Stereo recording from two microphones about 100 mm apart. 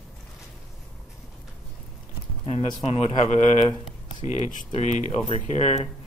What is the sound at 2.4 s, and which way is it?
Speech, 90° left.